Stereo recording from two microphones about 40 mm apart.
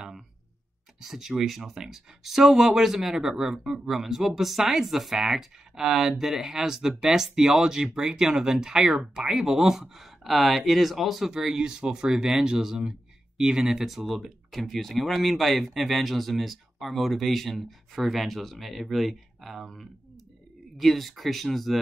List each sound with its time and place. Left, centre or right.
1.0 s speech: centre
13.8 s speech: centre